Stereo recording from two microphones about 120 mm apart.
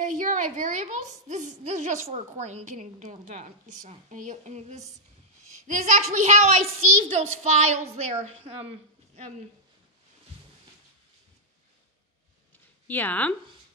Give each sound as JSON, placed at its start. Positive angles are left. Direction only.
{"t": 0.0, "sound": "a woman's voice", "side_deg": -90}
{"t": 5.7, "sound": "a child's voice", "side_deg": -90}
{"t": 12.8, "sound": "speech", "side_deg": 15}